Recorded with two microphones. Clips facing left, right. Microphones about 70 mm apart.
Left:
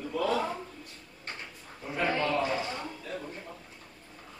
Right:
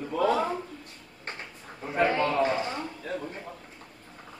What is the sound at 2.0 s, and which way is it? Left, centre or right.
Speech, right.